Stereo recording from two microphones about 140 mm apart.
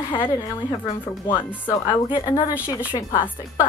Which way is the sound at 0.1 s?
35° left (ahead or behind).